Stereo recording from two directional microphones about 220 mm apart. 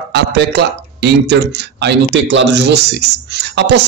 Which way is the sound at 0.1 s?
50° right (ahead or behind).